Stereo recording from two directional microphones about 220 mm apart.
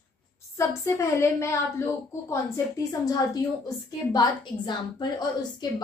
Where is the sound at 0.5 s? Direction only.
10° left (ahead or behind).